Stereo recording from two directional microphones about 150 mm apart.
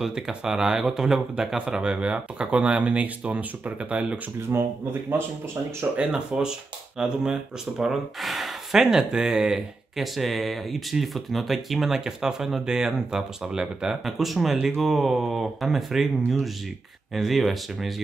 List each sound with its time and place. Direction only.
0.0 s speech: 5° right (ahead or behind)
5.8 s speech: 5° right (ahead or behind)
17.1 s speech: centre (ahead or behind)